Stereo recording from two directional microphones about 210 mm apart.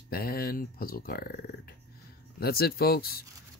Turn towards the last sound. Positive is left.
turn(degrees=45)  # may be behind; listen again after turning